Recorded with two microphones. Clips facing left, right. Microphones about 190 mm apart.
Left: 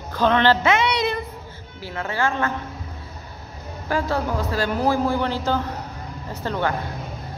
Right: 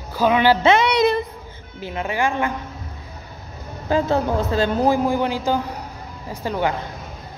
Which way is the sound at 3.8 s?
20° right (ahead or behind).